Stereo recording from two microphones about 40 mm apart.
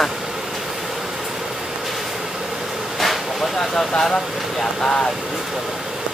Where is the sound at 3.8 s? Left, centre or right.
Centre.